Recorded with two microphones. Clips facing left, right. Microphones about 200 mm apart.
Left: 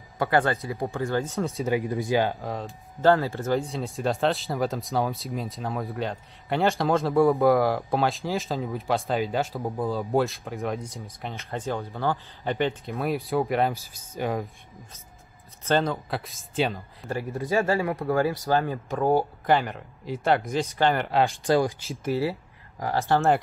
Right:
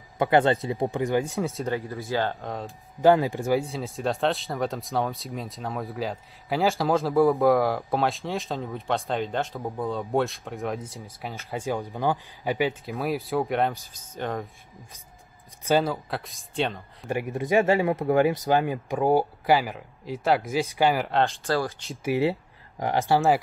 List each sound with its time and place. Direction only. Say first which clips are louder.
0.2 s speech: right 3 dB; 20° right (ahead or behind)
1.3 s speech: even; centre (ahead or behind)
1.7 s speech: left 4 dB; 15° left (ahead or behind)
2.4 s speech: left 1 dB; centre (ahead or behind)
3.0 s speech: right 2 dB; 15° right (ahead or behind)
3.6 s speech: left 1 dB; centre (ahead or behind)
11.5 s speech: right 2 dB; 10° right (ahead or behind); by 14.9 s 5° left (ahead or behind)
15.6 s speech: right 1 dB; 10° right (ahead or behind)
17.1 s speech: right 3 dB; 15° right (ahead or behind); by 21.3 s centre (ahead or behind)
21.3 s speech: left 4 dB; 15° left (ahead or behind)
22.0 s speech: right 2 dB; 20° right (ahead or behind)
23.0 s speech: even; 5° right (ahead or behind)